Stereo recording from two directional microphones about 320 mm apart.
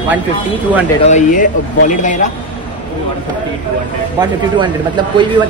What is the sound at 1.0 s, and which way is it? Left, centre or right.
Speech, left.